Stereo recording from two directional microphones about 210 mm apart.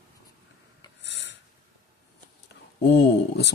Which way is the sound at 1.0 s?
60° left (ahead or behind).